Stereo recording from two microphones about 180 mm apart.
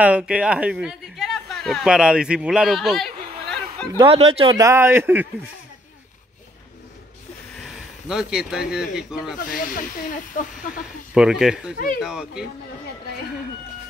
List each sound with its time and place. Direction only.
0.0 s speech: 5° right (ahead or behind)
3.9 s speech: 30° right (ahead or behind)
4.6 s speech: 15° right (ahead or behind)
7.6 s speech: centre (ahead or behind)
9.4 s speech: 50° left (ahead or behind)
11.1 s speech: 5° right (ahead or behind)